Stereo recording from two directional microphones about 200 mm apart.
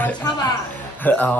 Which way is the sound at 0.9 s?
10° left (ahead or behind).